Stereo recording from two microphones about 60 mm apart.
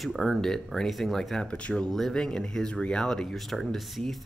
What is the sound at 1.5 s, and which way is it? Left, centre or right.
Speech, centre.